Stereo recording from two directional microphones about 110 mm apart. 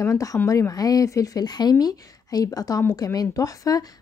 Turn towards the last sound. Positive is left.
turn(degrees=35)  # may be behind; listen again after turning